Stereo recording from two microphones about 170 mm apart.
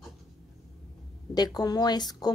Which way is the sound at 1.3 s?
25° left (ahead or behind).